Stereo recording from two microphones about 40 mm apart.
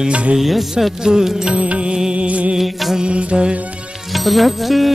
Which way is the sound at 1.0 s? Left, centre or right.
Centre.